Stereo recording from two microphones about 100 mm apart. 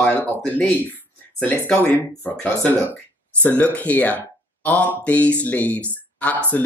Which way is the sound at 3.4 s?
15° left (ahead or behind).